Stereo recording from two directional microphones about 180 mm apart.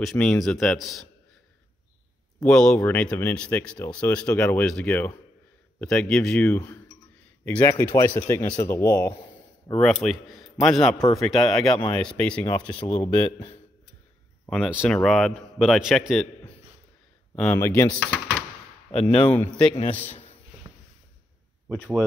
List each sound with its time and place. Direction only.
0.0 s a man's voice: 5° left (ahead or behind)
2.4 s speech: 5° left (ahead or behind)
9.7 s a man's voice: 5° left (ahead or behind)
14.4 s a sound: 5° left (ahead or behind)
14.9 s a man's voice: 5° left (ahead or behind)
17.4 s speech: 10° left (ahead or behind)
18.9 s speech: 35° left (ahead or behind)
19.2 s speech: 10° left (ahead or behind)
19.6 s speech: 35° left (ahead or behind)
20.1 s a sound: 35° left (ahead or behind)
21.6 s a man's voice: 5° left (ahead or behind)